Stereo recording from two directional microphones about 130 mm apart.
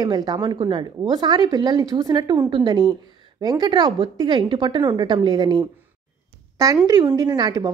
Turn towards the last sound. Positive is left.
turn(degrees=-30)  # may be behind; listen again after turning